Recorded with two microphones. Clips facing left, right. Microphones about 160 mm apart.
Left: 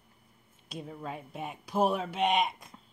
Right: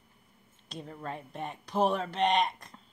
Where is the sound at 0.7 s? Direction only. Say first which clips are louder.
Even; 5° left (ahead or behind).